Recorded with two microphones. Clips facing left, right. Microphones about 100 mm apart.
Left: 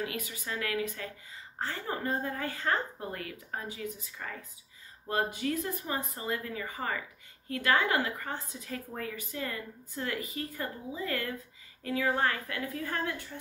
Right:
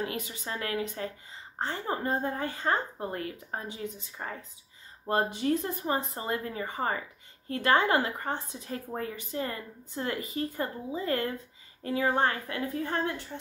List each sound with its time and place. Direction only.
0.0 s speech: 30° right (ahead or behind)